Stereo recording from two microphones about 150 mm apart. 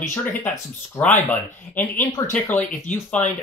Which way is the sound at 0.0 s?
15° left (ahead or behind).